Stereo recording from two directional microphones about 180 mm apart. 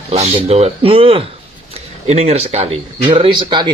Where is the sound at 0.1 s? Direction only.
35° right (ahead or behind).